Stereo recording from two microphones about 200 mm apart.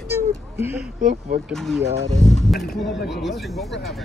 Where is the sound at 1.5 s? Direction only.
Centre (ahead or behind).